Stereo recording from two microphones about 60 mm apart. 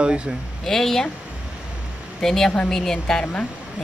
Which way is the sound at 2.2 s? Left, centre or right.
Centre.